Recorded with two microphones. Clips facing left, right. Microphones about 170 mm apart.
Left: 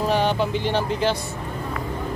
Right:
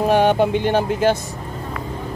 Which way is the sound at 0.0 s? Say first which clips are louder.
Right 6 dB; 55° right (ahead or behind).